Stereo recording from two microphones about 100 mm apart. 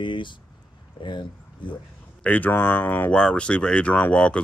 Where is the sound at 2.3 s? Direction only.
15° left (ahead or behind).